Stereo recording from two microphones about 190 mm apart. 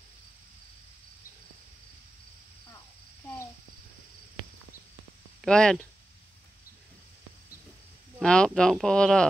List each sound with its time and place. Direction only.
5.4 s speech: 5° left (ahead or behind)
8.2 s speech: centre (ahead or behind)